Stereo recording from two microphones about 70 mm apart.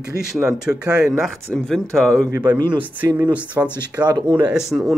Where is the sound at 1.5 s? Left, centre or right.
Centre.